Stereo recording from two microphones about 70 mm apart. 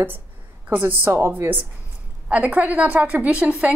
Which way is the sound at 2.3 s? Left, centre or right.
Right.